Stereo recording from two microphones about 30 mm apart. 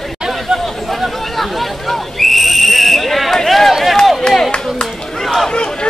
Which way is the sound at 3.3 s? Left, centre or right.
Centre.